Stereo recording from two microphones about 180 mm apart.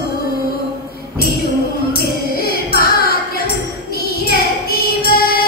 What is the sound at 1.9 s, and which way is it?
Music, 60° left (ahead or behind).